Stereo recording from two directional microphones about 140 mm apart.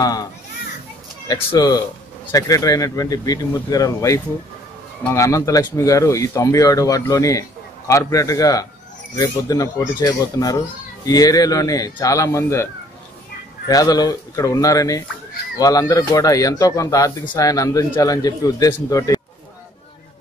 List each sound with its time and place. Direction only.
0.0 s speech: 25° left (ahead or behind)
13.7 s speech: 25° left (ahead or behind)